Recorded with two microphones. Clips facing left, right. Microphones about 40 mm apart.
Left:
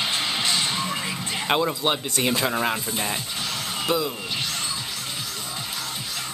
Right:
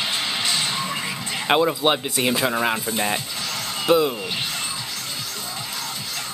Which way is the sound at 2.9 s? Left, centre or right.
Right.